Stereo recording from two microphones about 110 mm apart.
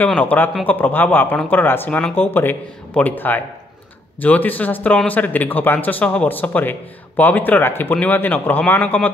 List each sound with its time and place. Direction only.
0.0 s speech: 15° left (ahead or behind)